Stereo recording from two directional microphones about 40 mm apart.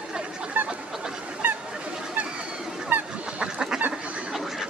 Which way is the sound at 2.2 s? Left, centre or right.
Right.